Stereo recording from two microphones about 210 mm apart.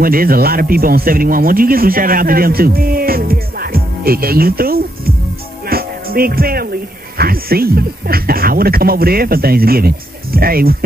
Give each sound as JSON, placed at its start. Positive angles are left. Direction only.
{"t": 0.0, "sound": "speech", "side_deg": -45}
{"t": 5.7, "sound": "music", "side_deg": -45}
{"t": 7.2, "sound": "speech", "side_deg": -45}